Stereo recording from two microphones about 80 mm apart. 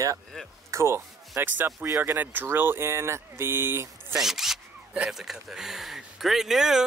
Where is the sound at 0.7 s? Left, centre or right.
Right.